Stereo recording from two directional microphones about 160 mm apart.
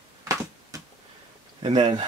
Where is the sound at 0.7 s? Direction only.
20° right (ahead or behind).